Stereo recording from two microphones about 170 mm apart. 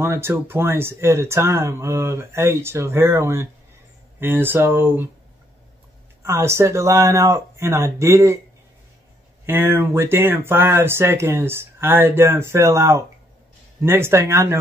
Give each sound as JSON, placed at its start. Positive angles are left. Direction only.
{"t": 0.0, "sound": "speech", "side_deg": -15}
{"t": 6.2, "sound": "speech", "side_deg": -15}
{"t": 9.5, "sound": "speech", "side_deg": -15}